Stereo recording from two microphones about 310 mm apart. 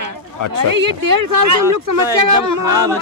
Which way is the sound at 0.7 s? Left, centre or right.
Right.